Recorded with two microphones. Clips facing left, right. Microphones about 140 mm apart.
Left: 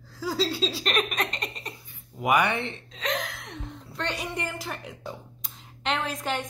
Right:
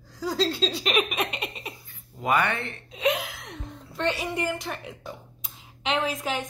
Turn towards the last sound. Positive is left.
turn(degrees=0)  # may be behind; listen again after turning